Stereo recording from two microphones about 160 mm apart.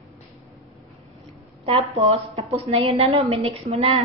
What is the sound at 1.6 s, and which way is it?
A woman's voice, 35° right (ahead or behind).